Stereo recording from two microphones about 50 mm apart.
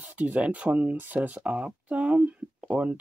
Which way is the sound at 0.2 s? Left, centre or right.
Right.